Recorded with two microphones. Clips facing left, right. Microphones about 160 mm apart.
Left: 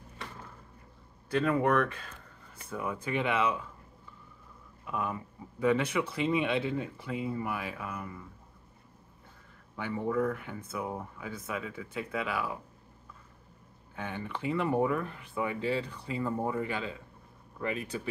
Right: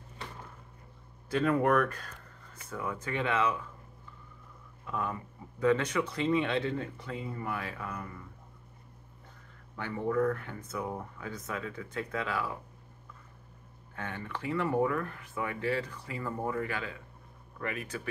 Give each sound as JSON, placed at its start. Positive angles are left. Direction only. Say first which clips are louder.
{"t": 1.3, "sound": "speech", "louder": "even", "side_deg": 0}
{"t": 4.8, "sound": "speech", "louder": "left 1 dB", "side_deg": 15}
{"t": 9.8, "sound": "speech", "louder": "even", "side_deg": 10}
{"t": 13.9, "sound": "speech", "louder": "left 2 dB", "side_deg": 15}